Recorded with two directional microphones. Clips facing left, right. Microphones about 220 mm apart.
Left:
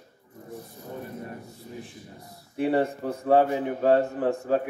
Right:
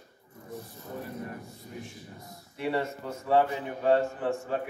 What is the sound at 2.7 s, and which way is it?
Speech, 35° left (ahead or behind).